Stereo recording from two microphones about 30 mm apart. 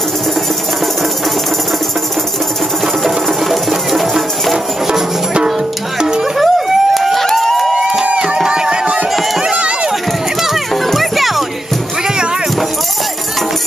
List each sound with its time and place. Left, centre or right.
3.0 s music: centre
5.9 s music: right
6.3 s a sound: centre
8.5 s music: right
9.4 s run: right
10.7 s music: centre